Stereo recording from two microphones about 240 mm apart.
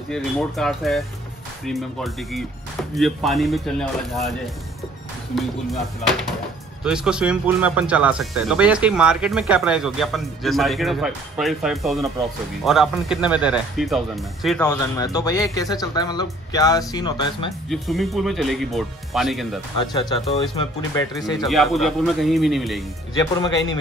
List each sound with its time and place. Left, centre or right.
0.1 s speech: centre
6.8 s speech: centre
14.7 s speech: centre
17.6 s speech: centre
19.8 s speech: centre
21.5 s speech: centre
23.1 s speech: centre